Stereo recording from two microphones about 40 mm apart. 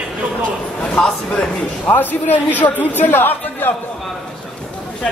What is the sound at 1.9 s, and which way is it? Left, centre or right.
A woman's voice, left.